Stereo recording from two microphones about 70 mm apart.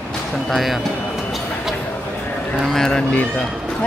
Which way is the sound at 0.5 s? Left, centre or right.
Centre.